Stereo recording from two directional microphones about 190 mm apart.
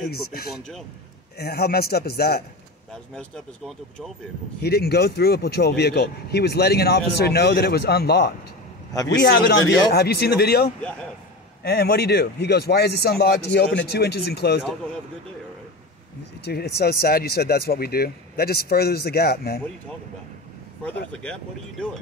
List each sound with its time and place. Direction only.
0.0 s speech: 50° left (ahead or behind)
2.9 s speech: 5° left (ahead or behind)
4.6 s speech: 55° left (ahead or behind)
16.4 s speech: 55° left (ahead or behind)
20.8 s speech: 5° left (ahead or behind)